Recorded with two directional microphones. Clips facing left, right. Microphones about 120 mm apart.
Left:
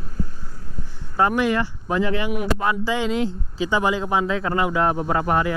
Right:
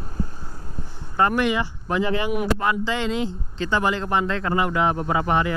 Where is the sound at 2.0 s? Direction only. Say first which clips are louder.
Even; 25° right (ahead or behind).